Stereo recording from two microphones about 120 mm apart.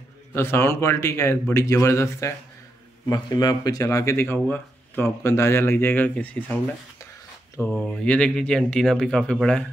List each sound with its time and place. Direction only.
0.3 s speech: 20° left (ahead or behind)
3.1 s speech: 35° left (ahead or behind); by 6.6 s 15° left (ahead or behind)
7.7 s speech: 10° left (ahead or behind)